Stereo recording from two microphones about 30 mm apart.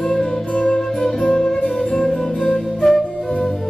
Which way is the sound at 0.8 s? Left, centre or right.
Centre.